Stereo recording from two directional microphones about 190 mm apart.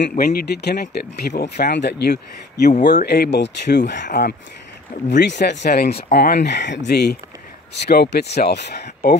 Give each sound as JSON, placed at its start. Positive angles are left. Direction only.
{"t": 0.1, "sound": "speech", "side_deg": 50}